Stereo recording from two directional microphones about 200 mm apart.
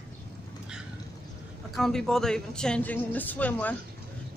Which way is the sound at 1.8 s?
Centre (ahead or behind).